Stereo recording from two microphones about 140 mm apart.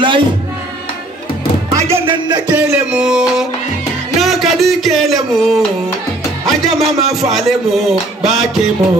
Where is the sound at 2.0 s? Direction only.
35° right (ahead or behind).